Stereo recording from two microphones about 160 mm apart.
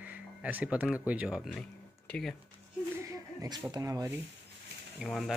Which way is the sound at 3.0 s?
20° right (ahead or behind).